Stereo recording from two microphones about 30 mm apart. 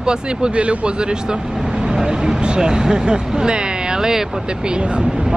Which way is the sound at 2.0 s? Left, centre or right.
Right.